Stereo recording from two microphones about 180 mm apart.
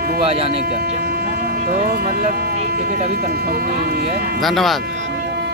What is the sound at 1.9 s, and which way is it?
Speech, 55° right (ahead or behind).